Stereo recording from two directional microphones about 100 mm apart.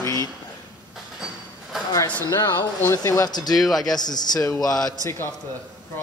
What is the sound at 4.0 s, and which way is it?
Speech, 45° left (ahead or behind).